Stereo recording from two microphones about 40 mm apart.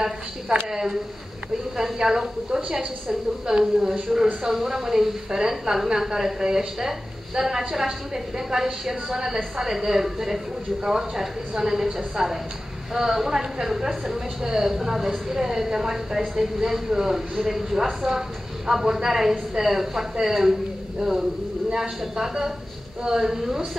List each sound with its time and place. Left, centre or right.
0.7 s a woman's voice: centre
4.4 s a woman's voice: centre